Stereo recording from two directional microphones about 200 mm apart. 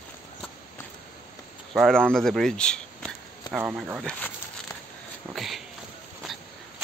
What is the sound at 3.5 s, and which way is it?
Speech, 10° right (ahead or behind).